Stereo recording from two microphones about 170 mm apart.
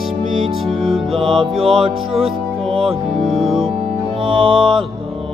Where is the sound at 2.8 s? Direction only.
Centre (ahead or behind).